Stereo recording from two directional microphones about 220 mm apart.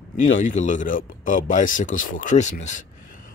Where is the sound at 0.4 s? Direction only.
35° left (ahead or behind).